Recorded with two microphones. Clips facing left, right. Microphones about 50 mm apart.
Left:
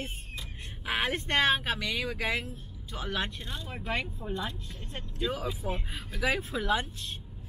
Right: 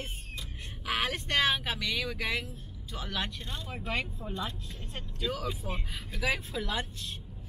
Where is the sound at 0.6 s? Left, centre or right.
Centre.